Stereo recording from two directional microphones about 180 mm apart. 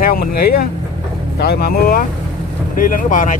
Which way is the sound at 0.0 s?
55° left (ahead or behind).